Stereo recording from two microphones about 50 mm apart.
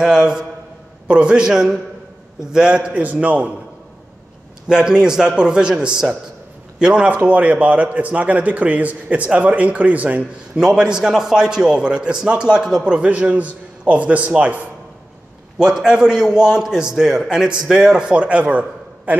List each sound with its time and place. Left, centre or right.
0.0 s a man's voice: centre
4.6 s a man's voice: centre
10.5 s a man's voice: centre
15.6 s a man's voice: centre
18.1 s a man's voice: right